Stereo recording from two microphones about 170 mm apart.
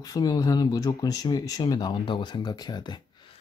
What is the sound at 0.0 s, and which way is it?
Speech, 20° left (ahead or behind).